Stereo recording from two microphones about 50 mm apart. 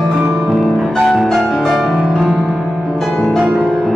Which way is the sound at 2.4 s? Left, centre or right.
Centre.